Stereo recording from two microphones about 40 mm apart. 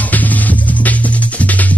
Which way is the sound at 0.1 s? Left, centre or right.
Left.